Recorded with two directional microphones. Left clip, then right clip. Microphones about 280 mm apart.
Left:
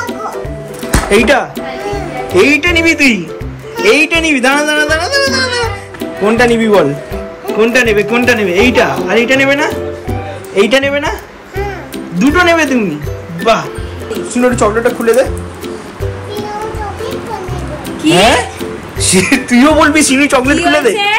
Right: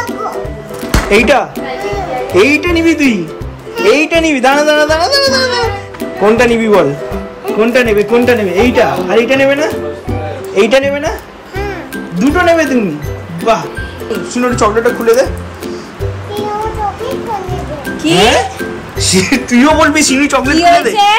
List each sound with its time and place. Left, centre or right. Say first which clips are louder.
1.1 s speech: right 1 dB; centre
12.2 s speech: even; centre
18.1 s speech: even; centre
20.9 s speech: right 3 dB; right